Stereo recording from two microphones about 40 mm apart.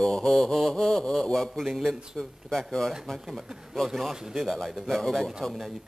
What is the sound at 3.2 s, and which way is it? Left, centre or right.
Speech, centre.